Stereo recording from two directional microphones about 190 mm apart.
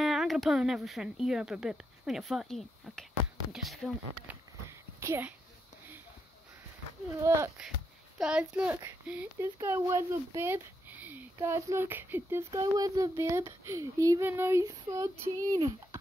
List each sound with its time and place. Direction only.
0.0 s speech: centre (ahead or behind)
4.6 s a sound: 15° right (ahead or behind)
7.2 s a child's voice: 15° right (ahead or behind)
8.2 s a child's voice: 5° right (ahead or behind)